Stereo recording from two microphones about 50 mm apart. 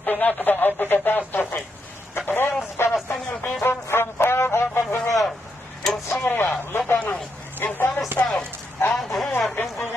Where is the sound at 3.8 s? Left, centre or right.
Left.